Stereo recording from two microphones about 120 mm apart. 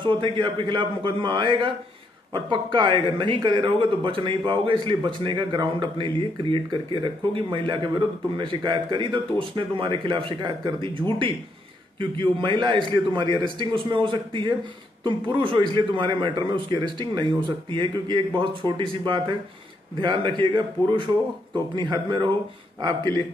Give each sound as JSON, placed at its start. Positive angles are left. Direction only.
{"t": 0.0, "sound": "a man's voice", "side_deg": -45}